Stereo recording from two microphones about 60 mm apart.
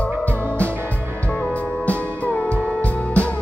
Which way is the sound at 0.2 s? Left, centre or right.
Left.